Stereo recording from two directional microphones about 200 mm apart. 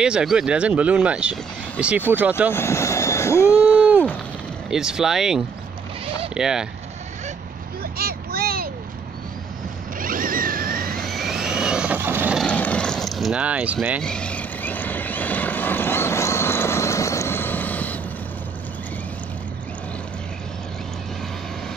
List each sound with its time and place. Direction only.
0.0 s speech: 5° right (ahead or behind)
2.5 s vehicle: 15° left (ahead or behind)
4.6 s speech: 5° right (ahead or behind)
7.8 s a sound: 50° right (ahead or behind)
9.9 s zipper: 45° right (ahead or behind)
11.0 s vehicle: centre (ahead or behind)
12.4 s vehicle: 5° left (ahead or behind)
14.0 s vehicle: 5° left (ahead or behind)